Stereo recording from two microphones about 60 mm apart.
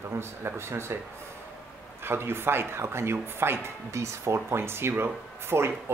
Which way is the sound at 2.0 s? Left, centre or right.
Right.